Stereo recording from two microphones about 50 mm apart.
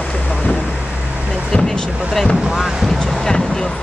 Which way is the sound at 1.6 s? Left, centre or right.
Centre.